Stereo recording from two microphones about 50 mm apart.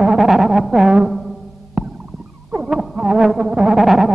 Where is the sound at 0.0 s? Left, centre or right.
Centre.